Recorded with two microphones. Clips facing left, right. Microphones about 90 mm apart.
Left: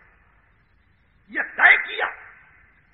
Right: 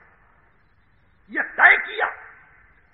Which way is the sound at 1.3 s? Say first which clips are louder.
Right 1 dB; 5° right (ahead or behind).